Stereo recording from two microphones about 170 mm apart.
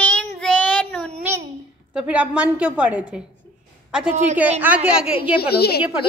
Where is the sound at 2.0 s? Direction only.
10° right (ahead or behind).